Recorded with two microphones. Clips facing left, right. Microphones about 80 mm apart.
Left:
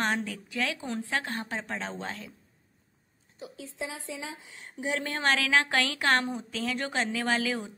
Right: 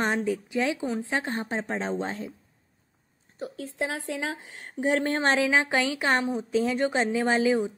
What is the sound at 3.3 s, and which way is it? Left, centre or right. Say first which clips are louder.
A woman's voice: right 7 dB; right.